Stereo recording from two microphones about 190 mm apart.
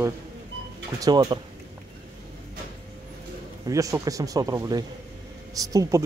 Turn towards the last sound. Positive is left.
turn(degrees=-15)  # may be behind; listen again after turning